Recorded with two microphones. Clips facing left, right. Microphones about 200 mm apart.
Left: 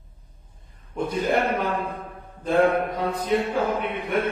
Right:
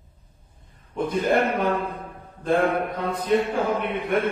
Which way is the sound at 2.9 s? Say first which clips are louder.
Right 1 dB; 55° right (ahead or behind).